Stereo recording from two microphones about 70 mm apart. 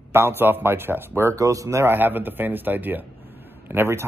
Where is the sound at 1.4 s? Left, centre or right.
Right.